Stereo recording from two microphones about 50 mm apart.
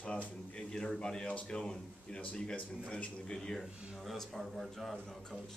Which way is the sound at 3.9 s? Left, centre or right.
Centre.